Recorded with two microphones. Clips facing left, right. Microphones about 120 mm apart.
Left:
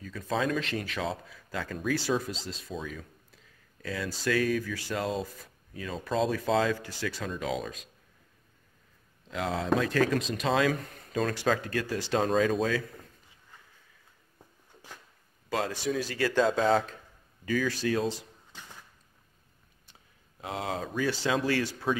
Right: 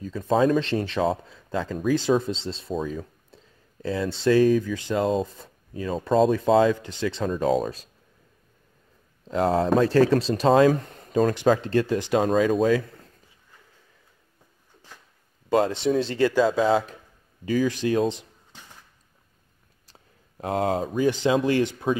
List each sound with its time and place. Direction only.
0.0 s speech: 30° right (ahead or behind)
7.2 s speech: 40° right (ahead or behind)
9.3 s speech: 40° right (ahead or behind); by 12.1 s 25° right (ahead or behind)
12.1 s speech: 5° right (ahead or behind)
12.6 s speech: 25° right (ahead or behind)
15.5 s speech: 25° right (ahead or behind)
16.3 s speech: 5° right (ahead or behind)
17.5 s speech: 20° right (ahead or behind)
19.9 s a sound: 45° right (ahead or behind)
20.9 s speech: 20° right (ahead or behind)